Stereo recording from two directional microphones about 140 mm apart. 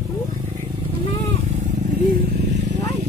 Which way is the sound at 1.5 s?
80° right.